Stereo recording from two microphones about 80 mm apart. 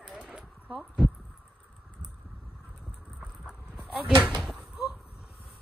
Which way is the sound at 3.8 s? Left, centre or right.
Centre.